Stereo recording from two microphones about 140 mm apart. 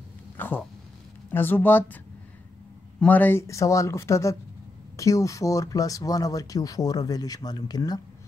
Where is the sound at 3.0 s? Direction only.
10° left (ahead or behind).